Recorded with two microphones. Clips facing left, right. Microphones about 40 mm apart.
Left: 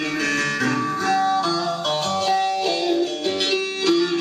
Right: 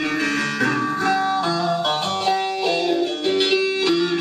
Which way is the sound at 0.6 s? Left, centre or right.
Centre.